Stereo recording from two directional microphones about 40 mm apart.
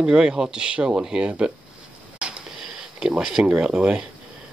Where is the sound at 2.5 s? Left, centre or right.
Centre.